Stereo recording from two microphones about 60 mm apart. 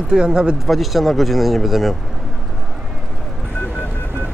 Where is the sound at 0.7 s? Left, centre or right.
Centre.